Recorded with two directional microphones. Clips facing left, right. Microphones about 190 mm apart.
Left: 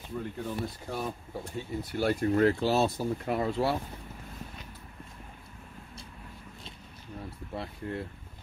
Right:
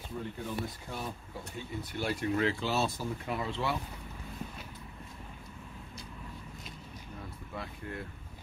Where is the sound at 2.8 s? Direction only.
60° left (ahead or behind).